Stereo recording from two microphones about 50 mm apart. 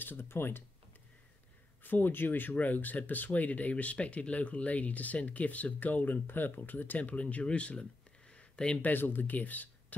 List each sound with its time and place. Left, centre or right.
0.0 s speech: left
1.8 s speech: left
8.3 s a sound: left
8.8 s speech: left